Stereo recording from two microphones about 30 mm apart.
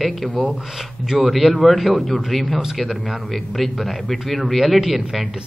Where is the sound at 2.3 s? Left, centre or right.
Centre.